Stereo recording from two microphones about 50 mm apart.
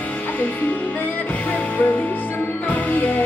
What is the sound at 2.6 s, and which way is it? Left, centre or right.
Music, left.